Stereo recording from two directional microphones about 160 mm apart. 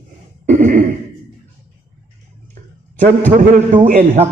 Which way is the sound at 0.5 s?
55° right (ahead or behind).